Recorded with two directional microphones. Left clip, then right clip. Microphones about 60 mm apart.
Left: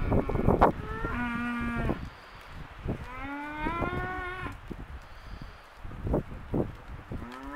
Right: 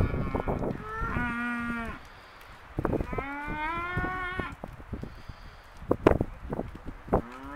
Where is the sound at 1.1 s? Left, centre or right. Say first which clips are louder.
Right 2 dB; right.